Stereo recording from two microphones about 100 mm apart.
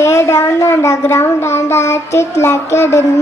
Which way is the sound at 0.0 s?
25° left (ahead or behind).